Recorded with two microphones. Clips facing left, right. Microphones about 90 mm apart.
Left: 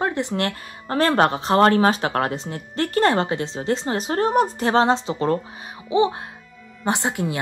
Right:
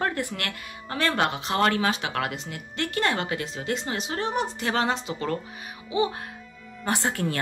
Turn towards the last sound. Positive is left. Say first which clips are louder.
# left 3 dB
turn(degrees=15)  # may be behind; listen again after turning